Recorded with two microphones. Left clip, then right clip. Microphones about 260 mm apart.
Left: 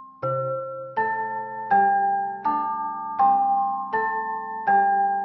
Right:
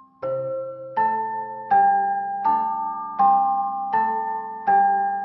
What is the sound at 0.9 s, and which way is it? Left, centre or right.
Music, centre.